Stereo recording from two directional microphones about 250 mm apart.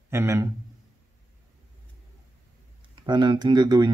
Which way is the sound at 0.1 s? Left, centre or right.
Centre.